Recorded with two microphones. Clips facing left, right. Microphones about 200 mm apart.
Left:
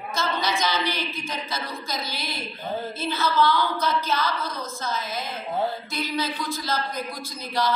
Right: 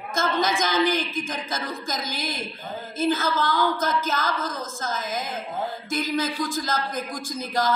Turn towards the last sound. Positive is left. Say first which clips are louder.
# right 1 dB
turn(degrees=-50)  # may be behind; listen again after turning